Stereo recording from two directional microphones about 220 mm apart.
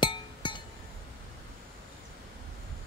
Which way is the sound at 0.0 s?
20° left (ahead or behind).